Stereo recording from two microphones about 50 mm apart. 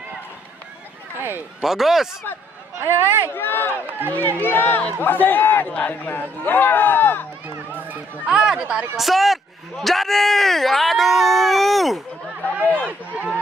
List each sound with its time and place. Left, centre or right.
1.6 s speech: centre
2.8 s speech: right
3.3 s speech: left
7.4 s run: right
8.3 s speech: centre
8.9 s speech: centre
12.4 s chatter: left
12.8 s speech: right